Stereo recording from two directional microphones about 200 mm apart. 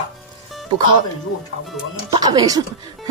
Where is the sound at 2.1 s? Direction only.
20° right (ahead or behind).